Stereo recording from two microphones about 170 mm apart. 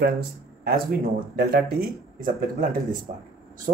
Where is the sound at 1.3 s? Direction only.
60° right (ahead or behind).